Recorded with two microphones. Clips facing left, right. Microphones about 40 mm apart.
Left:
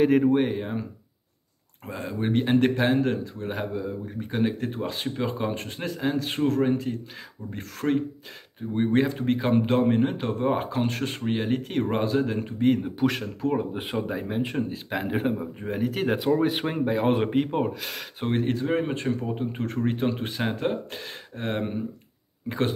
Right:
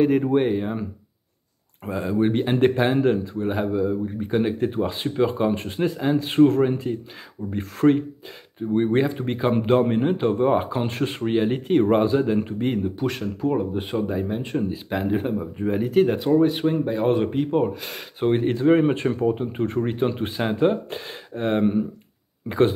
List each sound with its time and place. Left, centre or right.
0.0 s speech: centre
1.9 s speech: centre
6.2 s speech: centre
6.8 s speech: centre
7.5 s speech: centre
8.5 s speech: centre
12.8 s a man's voice: centre
18.5 s speech: centre